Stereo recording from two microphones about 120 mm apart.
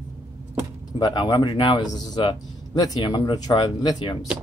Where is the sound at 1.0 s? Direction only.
35° left (ahead or behind).